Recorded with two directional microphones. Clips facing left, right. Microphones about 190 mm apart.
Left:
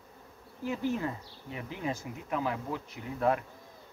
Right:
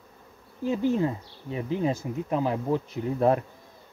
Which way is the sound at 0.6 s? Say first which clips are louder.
Right 7 dB; 25° right (ahead or behind).